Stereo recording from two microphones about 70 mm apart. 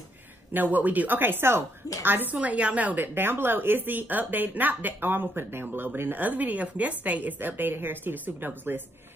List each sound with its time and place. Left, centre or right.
0.5 s speech: right
2.3 s speech: centre